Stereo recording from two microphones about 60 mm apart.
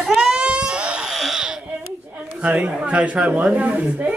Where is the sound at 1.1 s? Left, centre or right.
Centre.